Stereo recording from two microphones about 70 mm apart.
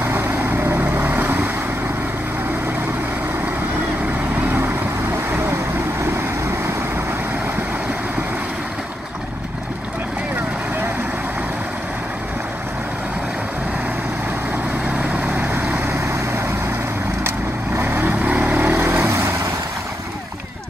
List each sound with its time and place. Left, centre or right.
0.7 s vehicle: right
15.0 s vehicle: right
17.7 s vehicle: right
18.7 s vehicle: right